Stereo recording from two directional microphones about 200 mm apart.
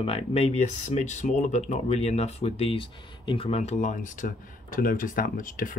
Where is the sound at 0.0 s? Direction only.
30° left (ahead or behind).